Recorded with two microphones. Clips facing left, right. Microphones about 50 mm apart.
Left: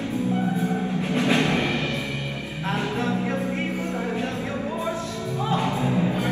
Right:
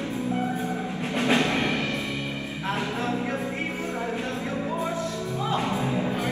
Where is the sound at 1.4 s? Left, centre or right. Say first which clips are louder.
Left 2 dB; left.